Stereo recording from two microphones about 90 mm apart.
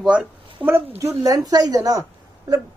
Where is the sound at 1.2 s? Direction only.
40° right (ahead or behind).